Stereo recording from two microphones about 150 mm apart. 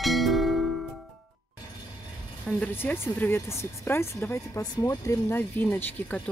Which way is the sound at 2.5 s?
10° left (ahead or behind).